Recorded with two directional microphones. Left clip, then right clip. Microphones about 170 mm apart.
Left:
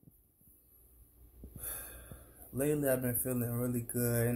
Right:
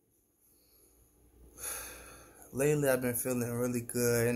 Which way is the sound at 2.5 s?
5° right (ahead or behind).